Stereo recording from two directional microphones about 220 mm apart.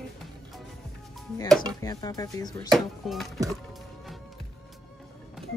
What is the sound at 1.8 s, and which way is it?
Speech, 15° left (ahead or behind).